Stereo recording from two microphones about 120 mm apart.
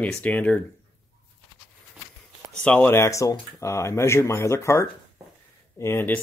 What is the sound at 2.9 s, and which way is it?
Speech, 25° left (ahead or behind).